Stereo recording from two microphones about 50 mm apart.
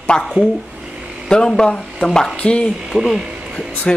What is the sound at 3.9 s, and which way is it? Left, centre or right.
Speech, centre.